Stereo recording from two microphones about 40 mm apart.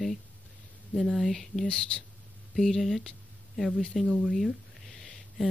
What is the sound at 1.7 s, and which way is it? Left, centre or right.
Speech, centre.